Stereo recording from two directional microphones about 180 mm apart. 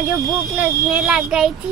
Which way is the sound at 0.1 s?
15° right (ahead or behind).